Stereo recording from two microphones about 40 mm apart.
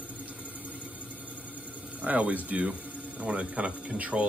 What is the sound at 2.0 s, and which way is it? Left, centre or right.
Speech, right.